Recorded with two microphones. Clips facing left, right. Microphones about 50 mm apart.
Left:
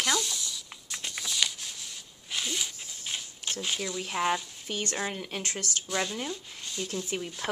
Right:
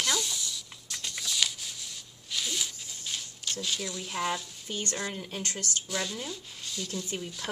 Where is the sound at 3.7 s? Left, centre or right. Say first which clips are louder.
Left 3 dB; centre.